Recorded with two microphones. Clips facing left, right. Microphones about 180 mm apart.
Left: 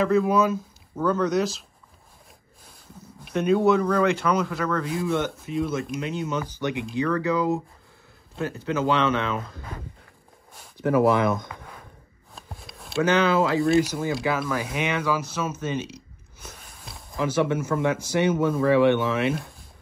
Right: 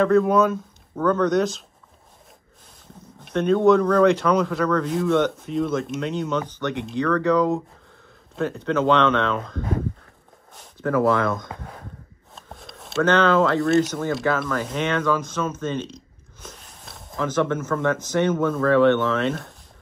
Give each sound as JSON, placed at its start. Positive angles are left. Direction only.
{"t": 0.0, "sound": "speech", "side_deg": 5}
{"t": 3.3, "sound": "speech", "side_deg": 5}
{"t": 10.8, "sound": "speech", "side_deg": 15}
{"t": 12.4, "sound": "speech", "side_deg": 0}
{"t": 17.2, "sound": "speech", "side_deg": 10}